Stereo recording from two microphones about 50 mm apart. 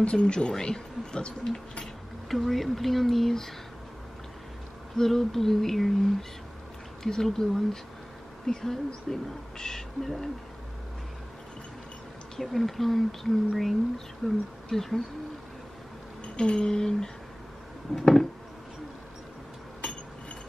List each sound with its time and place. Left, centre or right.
0.0 s speech: centre
2.2 s speech: centre
4.9 s speech: centre
12.4 s speech: centre
16.3 s speech: centre